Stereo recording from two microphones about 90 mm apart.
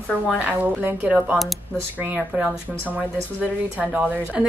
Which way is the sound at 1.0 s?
5° right (ahead or behind).